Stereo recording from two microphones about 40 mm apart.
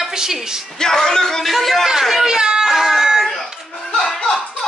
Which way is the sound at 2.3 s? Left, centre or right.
Centre.